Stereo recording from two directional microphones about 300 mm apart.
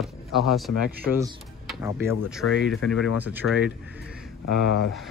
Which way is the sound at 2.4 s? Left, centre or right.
Left.